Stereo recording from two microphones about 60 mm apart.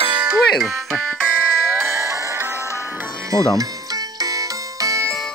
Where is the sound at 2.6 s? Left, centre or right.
Left.